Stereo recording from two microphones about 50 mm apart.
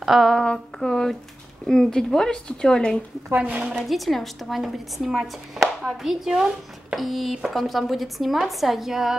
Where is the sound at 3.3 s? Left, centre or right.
Right.